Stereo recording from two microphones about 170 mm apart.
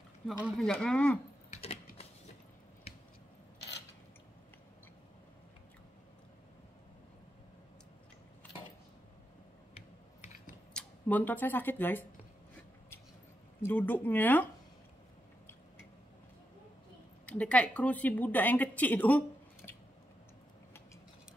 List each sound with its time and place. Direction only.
0.3 s speech: centre (ahead or behind)
1.5 s typing: 35° left (ahead or behind)
10.7 s speech: 5° left (ahead or behind)
13.6 s a woman's voice: 10° left (ahead or behind)
17.3 s a woman's voice: 5° left (ahead or behind)